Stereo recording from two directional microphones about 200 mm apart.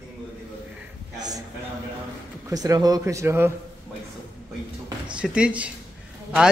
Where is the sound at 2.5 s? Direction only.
15° right (ahead or behind).